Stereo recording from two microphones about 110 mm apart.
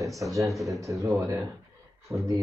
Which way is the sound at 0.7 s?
30° right (ahead or behind).